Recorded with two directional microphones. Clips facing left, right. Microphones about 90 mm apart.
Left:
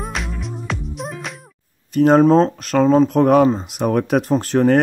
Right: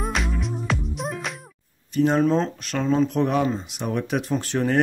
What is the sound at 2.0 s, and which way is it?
Speech, 50° left (ahead or behind).